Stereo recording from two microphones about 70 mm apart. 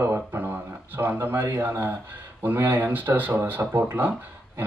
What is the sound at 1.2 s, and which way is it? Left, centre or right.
Speech, right.